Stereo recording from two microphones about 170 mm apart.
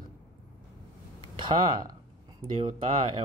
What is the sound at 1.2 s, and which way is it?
Speech, 25° right (ahead or behind).